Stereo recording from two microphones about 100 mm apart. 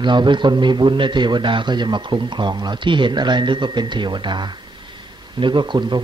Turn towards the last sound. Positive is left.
turn(degrees=-50)  # may be behind; listen again after turning